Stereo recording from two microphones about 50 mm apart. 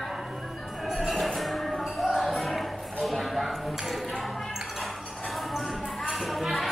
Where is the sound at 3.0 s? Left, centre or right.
Centre.